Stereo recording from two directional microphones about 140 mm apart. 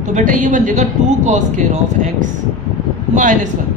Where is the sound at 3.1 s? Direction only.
65° right (ahead or behind).